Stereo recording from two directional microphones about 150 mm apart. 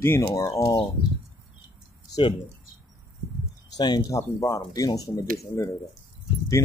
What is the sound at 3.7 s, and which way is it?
Speech, 30° left (ahead or behind).